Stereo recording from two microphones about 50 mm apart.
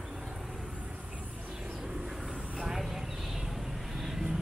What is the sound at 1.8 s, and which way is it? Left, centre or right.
Vehicle, centre.